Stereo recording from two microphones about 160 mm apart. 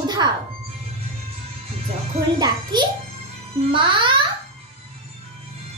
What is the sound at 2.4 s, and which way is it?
A woman's voice, 25° right (ahead or behind).